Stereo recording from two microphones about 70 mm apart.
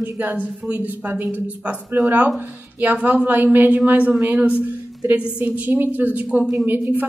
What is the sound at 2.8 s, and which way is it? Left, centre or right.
A woman's voice, right.